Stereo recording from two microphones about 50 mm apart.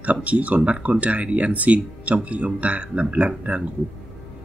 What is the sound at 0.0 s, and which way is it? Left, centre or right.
Speech, right.